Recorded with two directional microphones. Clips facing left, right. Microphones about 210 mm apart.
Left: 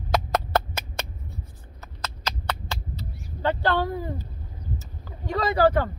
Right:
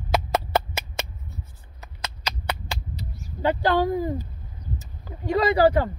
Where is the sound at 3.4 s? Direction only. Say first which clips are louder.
Right 3 dB; 15° right (ahead or behind).